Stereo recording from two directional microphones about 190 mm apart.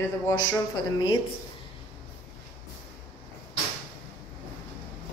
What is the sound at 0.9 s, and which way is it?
Speech, 25° left (ahead or behind).